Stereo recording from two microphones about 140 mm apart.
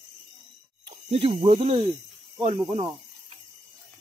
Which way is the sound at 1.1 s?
45° right (ahead or behind).